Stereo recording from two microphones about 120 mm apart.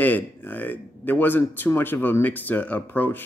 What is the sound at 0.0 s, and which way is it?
Speech, 15° left (ahead or behind).